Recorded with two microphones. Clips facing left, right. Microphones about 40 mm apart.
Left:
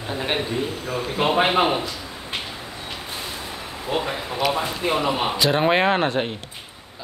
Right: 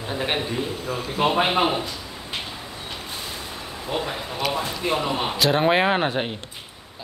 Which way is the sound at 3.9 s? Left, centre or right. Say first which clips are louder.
Left 3 dB; centre.